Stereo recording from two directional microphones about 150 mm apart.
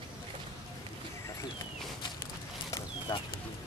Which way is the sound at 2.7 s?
25° left (ahead or behind).